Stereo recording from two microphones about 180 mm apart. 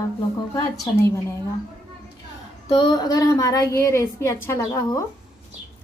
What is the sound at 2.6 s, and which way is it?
A woman's voice, 25° left (ahead or behind).